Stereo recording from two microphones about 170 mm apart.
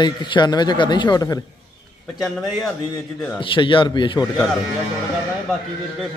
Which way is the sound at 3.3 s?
30° left (ahead or behind).